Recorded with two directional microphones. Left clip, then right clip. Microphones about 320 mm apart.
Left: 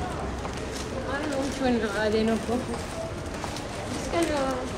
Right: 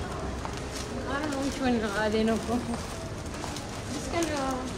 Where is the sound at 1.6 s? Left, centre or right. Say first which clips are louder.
Left 2 dB; right.